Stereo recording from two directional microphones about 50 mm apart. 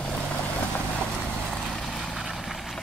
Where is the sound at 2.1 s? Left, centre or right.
Centre.